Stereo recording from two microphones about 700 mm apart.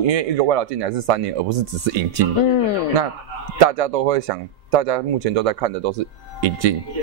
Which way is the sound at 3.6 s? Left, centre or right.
Right.